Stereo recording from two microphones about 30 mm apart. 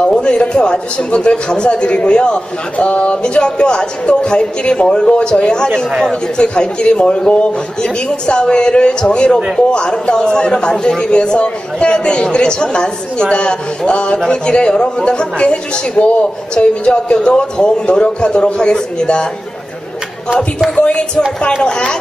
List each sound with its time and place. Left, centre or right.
0.1 s a sound: left
0.5 s speech: left
2.8 s a man's voice: left
20.7 s speech: left